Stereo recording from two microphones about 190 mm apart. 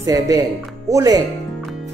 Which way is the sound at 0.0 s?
20° right (ahead or behind).